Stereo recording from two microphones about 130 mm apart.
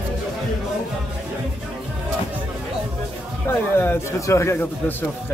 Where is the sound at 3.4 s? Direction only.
15° left (ahead or behind).